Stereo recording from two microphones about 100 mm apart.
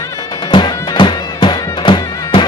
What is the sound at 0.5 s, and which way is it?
Music, 50° left (ahead or behind).